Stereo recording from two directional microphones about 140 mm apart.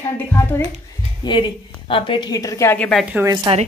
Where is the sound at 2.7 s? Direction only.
10° left (ahead or behind).